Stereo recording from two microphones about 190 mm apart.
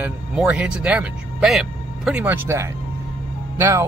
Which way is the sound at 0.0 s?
5° right (ahead or behind).